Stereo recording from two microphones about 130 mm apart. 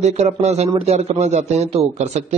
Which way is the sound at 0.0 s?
60° right (ahead or behind).